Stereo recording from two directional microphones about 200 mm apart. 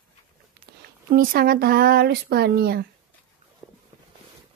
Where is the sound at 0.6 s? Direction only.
45° right (ahead or behind).